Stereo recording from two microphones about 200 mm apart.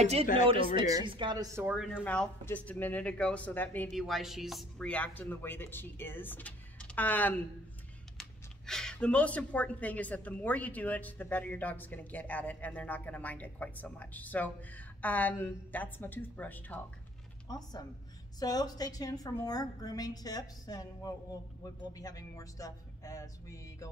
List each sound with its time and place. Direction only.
0.0 s speech: 30° right (ahead or behind)
0.7 s speech: 20° right (ahead or behind)
1.7 s speech: 5° right (ahead or behind)
2.0 s speech: 10° left (ahead or behind)
17.5 s a woman's voice: 20° left (ahead or behind)